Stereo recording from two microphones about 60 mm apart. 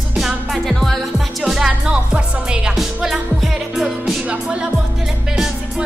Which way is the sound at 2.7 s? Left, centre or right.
Centre.